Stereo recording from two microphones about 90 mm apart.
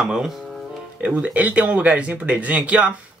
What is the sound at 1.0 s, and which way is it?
Speech, 15° right (ahead or behind).